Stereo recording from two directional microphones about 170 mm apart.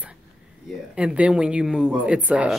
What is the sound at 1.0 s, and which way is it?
Speech, 5° right (ahead or behind).